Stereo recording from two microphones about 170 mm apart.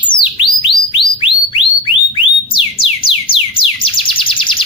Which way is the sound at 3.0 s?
30° left (ahead or behind).